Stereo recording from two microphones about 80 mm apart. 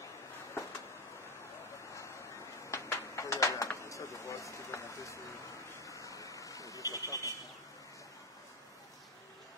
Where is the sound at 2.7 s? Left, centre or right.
Left.